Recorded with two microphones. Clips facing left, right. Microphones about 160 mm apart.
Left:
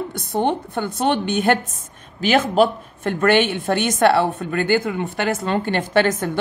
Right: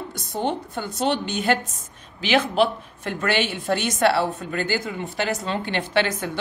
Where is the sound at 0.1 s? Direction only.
55° left (ahead or behind).